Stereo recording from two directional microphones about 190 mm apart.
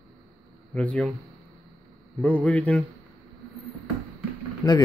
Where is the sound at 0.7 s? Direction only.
5° left (ahead or behind).